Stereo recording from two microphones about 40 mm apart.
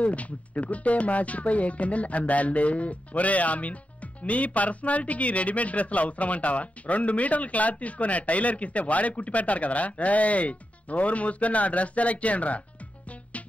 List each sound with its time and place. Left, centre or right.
0.0 s speech: left